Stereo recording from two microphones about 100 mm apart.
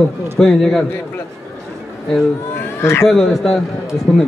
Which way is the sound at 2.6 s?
25° left (ahead or behind).